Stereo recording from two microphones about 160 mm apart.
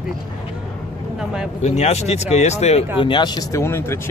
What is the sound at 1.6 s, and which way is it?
Speech, 45° left (ahead or behind).